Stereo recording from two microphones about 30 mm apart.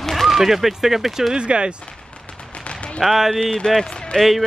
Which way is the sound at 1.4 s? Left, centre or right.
Right.